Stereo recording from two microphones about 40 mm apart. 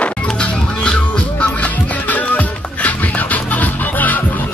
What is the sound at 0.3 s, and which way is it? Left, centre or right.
Music, left.